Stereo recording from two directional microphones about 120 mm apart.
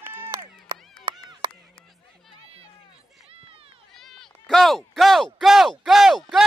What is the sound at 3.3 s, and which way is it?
Run, 50° right (ahead or behind).